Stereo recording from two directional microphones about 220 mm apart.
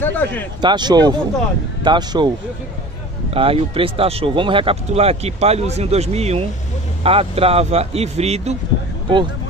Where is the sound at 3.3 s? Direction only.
25° right (ahead or behind).